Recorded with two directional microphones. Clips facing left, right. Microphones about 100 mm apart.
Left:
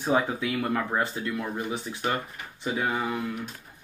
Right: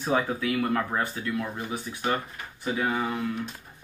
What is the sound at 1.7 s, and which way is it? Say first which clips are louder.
Speech: left 1 dB; 30° left (ahead or behind).